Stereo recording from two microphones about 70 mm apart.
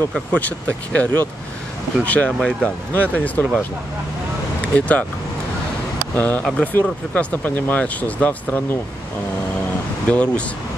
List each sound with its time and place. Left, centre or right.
0.3 s speech: left
4.7 s speech: centre
6.1 s speech: left
10.0 s speech: centre